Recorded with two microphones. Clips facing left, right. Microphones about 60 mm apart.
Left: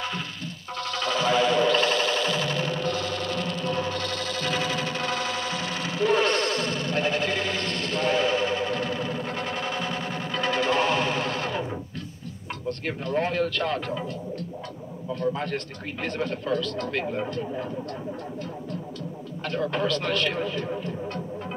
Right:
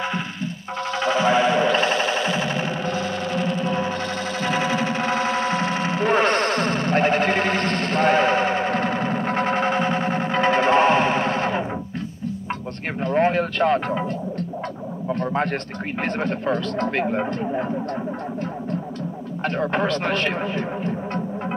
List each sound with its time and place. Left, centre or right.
0.9 s music: right
13.0 s speech: right
15.1 s speech: right
19.4 s speech: right